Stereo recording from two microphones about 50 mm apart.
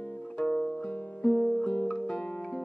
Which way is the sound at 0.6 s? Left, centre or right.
Left.